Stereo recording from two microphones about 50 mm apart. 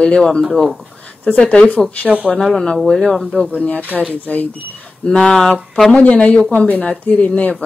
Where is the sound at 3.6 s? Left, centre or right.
Left.